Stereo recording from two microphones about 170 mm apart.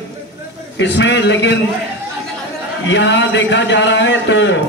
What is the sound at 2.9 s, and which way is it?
A man's voice, 90° left.